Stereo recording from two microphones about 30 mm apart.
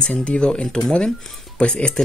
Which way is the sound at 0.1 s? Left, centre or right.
Left.